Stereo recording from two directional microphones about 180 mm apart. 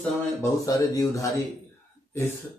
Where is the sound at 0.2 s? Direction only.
15° left (ahead or behind).